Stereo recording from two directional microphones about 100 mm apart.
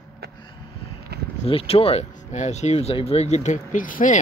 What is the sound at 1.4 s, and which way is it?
Speech, 75° left (ahead or behind).